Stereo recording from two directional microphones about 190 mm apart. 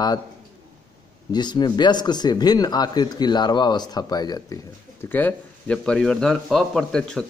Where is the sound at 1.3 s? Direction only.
20° left (ahead or behind).